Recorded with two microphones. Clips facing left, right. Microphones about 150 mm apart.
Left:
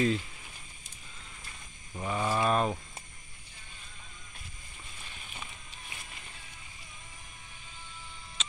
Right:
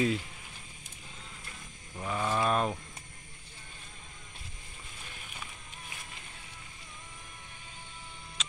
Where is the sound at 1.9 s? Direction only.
10° left (ahead or behind).